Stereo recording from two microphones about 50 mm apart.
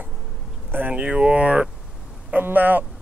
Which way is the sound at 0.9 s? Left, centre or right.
Right.